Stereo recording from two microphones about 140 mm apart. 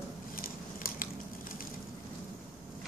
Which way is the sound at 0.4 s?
90° left.